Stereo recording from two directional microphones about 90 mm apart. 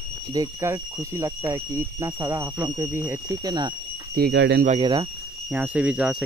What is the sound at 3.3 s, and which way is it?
Speech, 50° right (ahead or behind).